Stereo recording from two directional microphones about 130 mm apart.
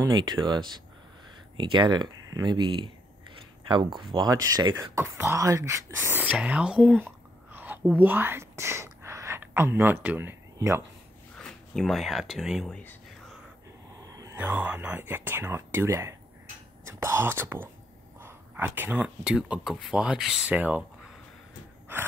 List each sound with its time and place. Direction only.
0.0 s speech: 30° right (ahead or behind)
11.3 s speech: 5° left (ahead or behind)
14.0 s a sound: 25° right (ahead or behind)
14.3 s speech: 15° right (ahead or behind)